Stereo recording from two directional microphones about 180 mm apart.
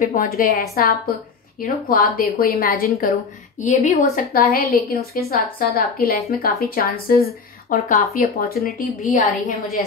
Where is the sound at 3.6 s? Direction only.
45° left (ahead or behind).